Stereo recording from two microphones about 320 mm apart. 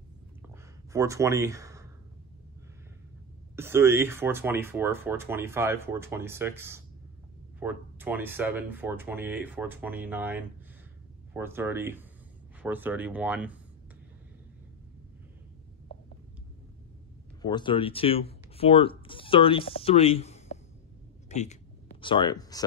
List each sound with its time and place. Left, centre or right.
0.9 s speech: centre
3.5 s speech: centre
17.4 s speech: centre
21.3 s a sound: left